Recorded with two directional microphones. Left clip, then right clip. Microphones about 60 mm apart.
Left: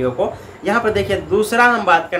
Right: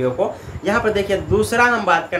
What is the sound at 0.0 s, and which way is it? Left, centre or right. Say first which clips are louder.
A man's voice: left 1 dB; left.